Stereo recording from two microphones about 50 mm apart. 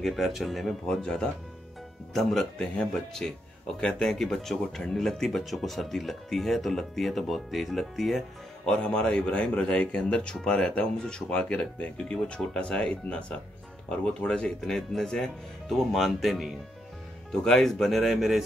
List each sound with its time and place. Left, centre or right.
0.0 s speech: centre
0.8 s speech: centre
2.6 s speech: centre
8.6 s speech: centre
15.8 s speech: centre
17.3 s speech: centre